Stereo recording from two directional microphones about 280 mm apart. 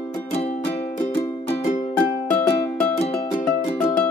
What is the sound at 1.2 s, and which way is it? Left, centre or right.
Music, left.